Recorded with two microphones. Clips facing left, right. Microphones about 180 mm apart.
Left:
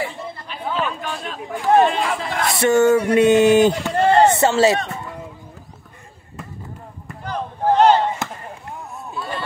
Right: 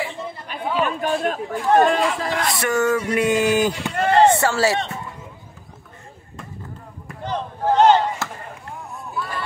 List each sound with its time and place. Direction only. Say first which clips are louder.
0.8 s speech: right 6 dB; 50° right (ahead or behind)
2.5 s speech: left 8 dB; 25° left (ahead or behind)
7.2 s chop: left 2 dB; 20° right (ahead or behind)
8.2 s basketball bounce: left 2 dB; 20° left (ahead or behind)